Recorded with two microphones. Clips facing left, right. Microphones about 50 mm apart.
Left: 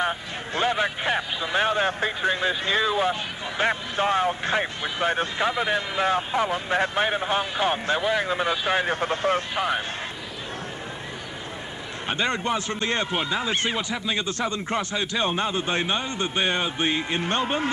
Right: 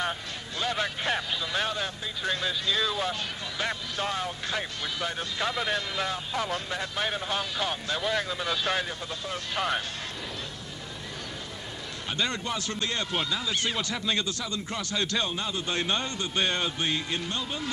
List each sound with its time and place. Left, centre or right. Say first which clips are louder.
0.6 s a sound: left 6 dB; left
1.9 s speech: left 11 dB; left
2.2 s speech: left 4 dB; left
5.4 s speech: left 2 dB; centre
8.0 s speech: left 5 dB; centre
8.3 s speech: left 6 dB; left
8.8 s speech: left 12 dB; left
9.6 s speech: left 4 dB; centre
12.1 s speech: left 6 dB; left
13.7 s speech: left 2 dB; centre
14.2 s speech: left 6 dB; left
15.0 s speech: left 2 dB; centre
15.2 s speech: left 6 dB; left
17.3 s speech: left 9 dB; left